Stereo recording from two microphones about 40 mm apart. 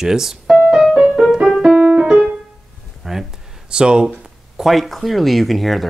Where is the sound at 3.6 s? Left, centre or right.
Right.